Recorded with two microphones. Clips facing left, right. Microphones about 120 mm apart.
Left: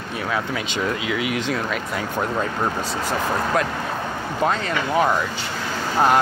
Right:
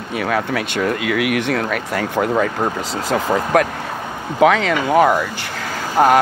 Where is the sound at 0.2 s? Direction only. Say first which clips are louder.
Right 5 dB; 65° right (ahead or behind).